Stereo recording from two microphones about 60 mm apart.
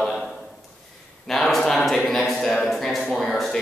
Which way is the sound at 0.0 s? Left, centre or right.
Centre.